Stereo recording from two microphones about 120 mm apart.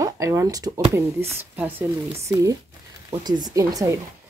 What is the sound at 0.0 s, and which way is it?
Speech, 25° right (ahead or behind).